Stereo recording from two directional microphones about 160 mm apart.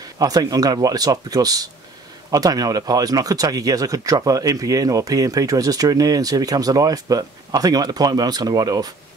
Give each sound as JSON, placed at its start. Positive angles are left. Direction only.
{"t": 0.2, "sound": "speech", "side_deg": -25}